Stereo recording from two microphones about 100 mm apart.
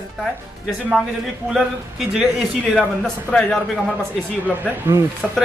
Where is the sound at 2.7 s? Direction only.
5° left (ahead or behind).